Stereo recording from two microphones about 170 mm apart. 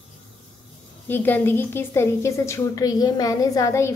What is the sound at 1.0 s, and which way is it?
A woman's voice, 10° left (ahead or behind).